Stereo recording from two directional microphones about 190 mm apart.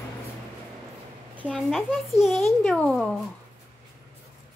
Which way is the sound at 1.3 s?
5° right (ahead or behind).